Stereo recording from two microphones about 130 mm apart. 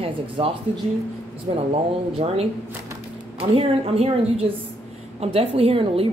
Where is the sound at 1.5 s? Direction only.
50° right (ahead or behind).